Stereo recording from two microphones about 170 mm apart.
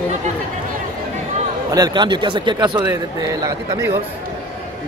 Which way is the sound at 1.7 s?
25° right (ahead or behind).